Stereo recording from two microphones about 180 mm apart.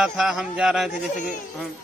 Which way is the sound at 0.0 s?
5° right (ahead or behind).